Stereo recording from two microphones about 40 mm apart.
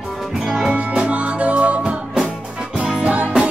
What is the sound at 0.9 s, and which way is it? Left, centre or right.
Music, right.